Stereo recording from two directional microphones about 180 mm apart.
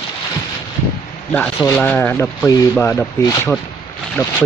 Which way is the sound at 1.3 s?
5° left (ahead or behind).